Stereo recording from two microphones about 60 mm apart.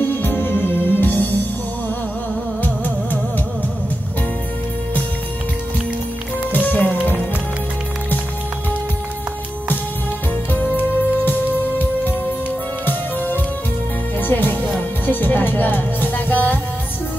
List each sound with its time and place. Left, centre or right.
0.0 s music: left
2.6 s music: left
6.5 s music: left
10.5 s music: left
12.8 s music: left